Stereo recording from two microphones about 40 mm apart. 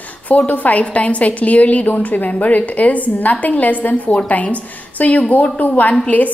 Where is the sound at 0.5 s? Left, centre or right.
Left.